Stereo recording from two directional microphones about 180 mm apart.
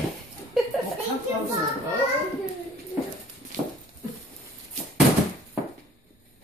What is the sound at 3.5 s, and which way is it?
Horse, 45° right (ahead or behind).